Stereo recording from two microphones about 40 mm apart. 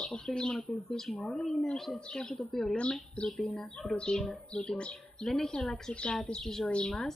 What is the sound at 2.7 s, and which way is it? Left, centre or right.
Speech, left.